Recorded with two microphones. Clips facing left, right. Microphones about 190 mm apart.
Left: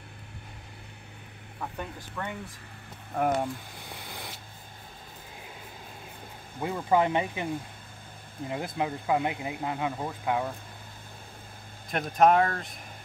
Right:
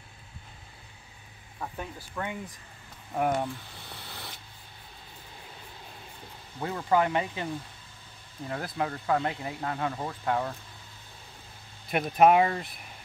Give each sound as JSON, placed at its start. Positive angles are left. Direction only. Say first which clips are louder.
{"t": 1.8, "sound": "speech", "louder": "right 2 dB", "side_deg": -10}
{"t": 3.2, "sound": "speech", "louder": "left 1 dB", "side_deg": 10}
{"t": 6.6, "sound": "speech", "louder": "left 1 dB", "side_deg": 20}
{"t": 11.9, "sound": "speech", "louder": "right 1 dB", "side_deg": -10}